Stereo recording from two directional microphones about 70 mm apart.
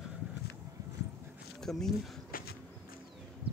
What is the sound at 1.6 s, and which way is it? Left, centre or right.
Speech, centre.